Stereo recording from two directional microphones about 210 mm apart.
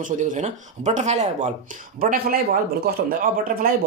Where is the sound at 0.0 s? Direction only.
35° right (ahead or behind).